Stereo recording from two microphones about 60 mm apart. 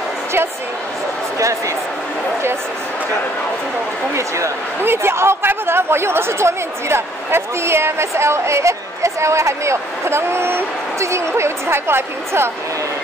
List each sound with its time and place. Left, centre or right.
4.8 s speech: right